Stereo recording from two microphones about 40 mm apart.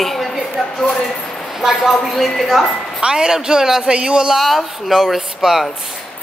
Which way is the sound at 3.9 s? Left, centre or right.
Right.